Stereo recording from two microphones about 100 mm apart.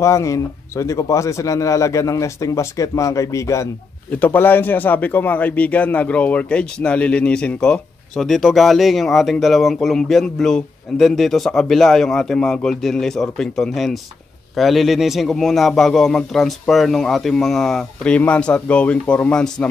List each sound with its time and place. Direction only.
0.0 s a man's voice: 30° left (ahead or behind)
4.1 s a man's voice: 20° left (ahead or behind)